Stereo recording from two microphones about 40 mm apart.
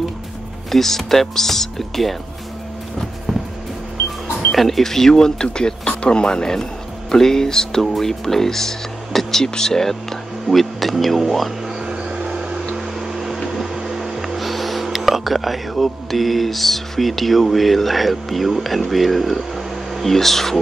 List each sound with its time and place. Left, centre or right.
0.7 s speech: centre
4.5 s speech: centre
11.8 s a sound: centre
13.6 s speech: centre